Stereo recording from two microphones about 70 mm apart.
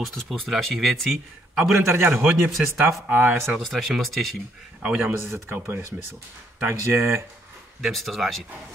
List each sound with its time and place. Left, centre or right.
0.0 s speech: centre
1.8 s a man's voice: right
3.6 s speech: centre
4.9 s a man's voice: right
7.8 s speech: centre